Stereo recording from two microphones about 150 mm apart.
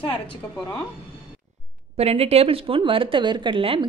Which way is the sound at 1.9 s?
40° right (ahead or behind).